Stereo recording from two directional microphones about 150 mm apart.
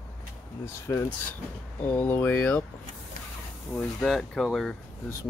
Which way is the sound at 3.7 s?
5° left (ahead or behind).